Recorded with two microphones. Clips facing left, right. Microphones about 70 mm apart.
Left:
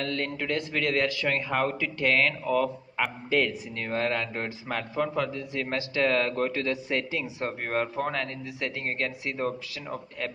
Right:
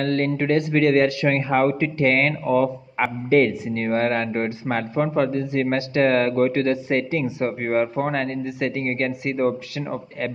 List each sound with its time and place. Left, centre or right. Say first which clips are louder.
0.0 s a man's voice: right 9 dB; right